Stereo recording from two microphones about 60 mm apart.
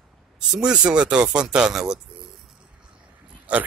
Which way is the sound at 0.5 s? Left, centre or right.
Centre.